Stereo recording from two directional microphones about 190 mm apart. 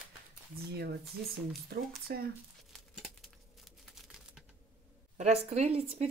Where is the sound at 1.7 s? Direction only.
55° right (ahead or behind).